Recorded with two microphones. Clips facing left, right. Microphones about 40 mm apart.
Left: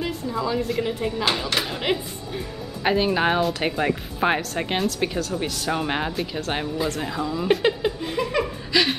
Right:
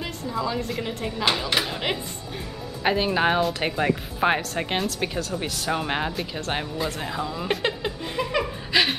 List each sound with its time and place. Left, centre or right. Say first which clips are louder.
0.0 s a woman's voice: left 2 dB; centre